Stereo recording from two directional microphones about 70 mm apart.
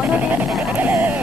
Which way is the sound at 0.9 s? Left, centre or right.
Right.